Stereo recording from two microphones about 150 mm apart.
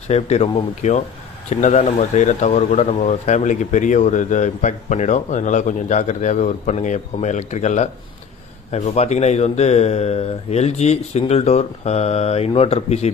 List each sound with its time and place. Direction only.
0.1 s speech: 45° left (ahead or behind)